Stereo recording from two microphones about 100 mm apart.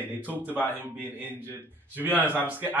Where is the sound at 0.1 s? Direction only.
15° right (ahead or behind).